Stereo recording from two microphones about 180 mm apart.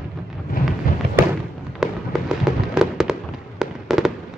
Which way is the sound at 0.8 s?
50° left (ahead or behind).